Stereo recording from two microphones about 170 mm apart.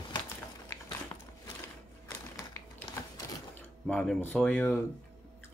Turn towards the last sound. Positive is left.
turn(degrees=10)  # may be behind; listen again after turning